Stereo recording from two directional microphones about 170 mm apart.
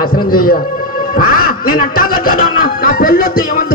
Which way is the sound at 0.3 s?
60° left (ahead or behind).